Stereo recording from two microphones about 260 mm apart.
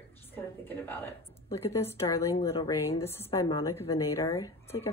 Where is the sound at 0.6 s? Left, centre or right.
Centre.